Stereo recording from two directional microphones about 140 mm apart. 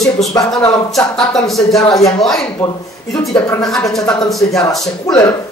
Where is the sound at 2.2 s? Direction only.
5° left (ahead or behind).